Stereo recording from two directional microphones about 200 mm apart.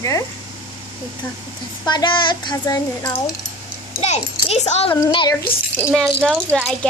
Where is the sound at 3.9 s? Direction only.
30° left (ahead or behind).